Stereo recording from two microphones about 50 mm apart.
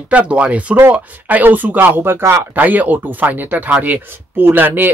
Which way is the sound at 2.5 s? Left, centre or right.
Right.